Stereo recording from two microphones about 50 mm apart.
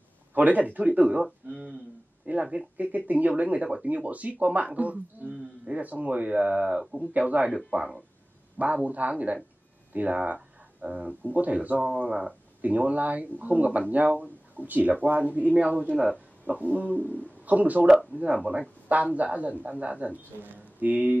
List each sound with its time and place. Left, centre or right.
0.3 s a man's voice: right
1.5 s speech: right
2.3 s speech: right
6.8 s speech: centre
7.2 s speech: right
12.6 s speech: right